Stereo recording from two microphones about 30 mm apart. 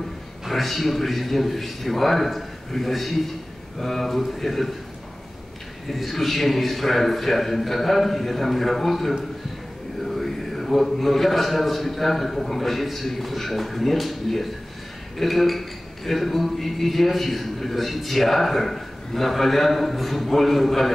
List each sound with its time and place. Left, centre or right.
0.5 s speech: centre
5.9 s speech: centre